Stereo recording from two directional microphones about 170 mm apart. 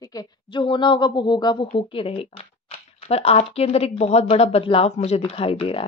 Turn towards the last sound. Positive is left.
turn(degrees=35)  # may be behind; listen again after turning